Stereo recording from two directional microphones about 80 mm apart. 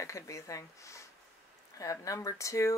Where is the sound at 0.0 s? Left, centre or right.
Left.